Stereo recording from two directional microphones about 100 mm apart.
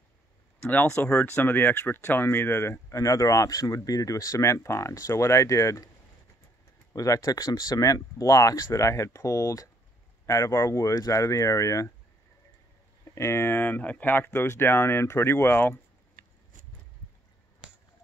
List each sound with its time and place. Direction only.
0.6 s speech: 15° left (ahead or behind); by 5.9 s 30° left (ahead or behind)
6.9 s speech: 35° left (ahead or behind)
13.0 s speech: 30° left (ahead or behind)